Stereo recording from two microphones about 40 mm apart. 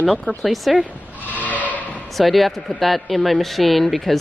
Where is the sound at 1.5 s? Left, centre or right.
Left.